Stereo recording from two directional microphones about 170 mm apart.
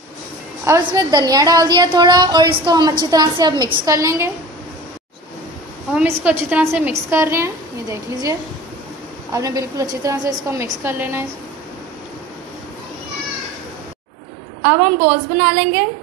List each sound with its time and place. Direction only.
0.7 s a woman's voice: 20° right (ahead or behind)
5.9 s a woman's voice: 5° right (ahead or behind)
14.6 s a woman's voice: 45° right (ahead or behind)